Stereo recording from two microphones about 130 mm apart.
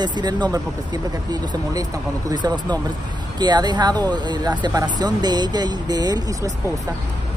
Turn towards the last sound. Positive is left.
turn(degrees=-30)  # may be behind; listen again after turning